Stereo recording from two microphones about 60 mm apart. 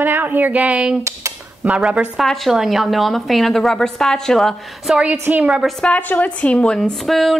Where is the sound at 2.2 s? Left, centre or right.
Centre.